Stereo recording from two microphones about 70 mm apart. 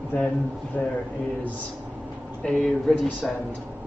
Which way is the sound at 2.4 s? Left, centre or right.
Centre.